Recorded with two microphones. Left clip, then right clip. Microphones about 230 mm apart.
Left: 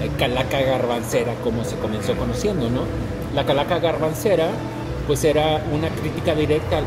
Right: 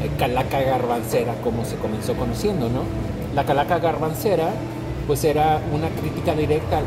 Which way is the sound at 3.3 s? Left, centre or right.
Centre.